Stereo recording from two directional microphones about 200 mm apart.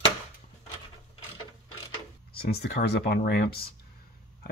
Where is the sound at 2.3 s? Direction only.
55° left (ahead or behind).